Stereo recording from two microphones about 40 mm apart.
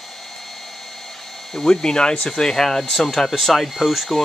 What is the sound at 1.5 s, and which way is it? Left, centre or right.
Speech, centre.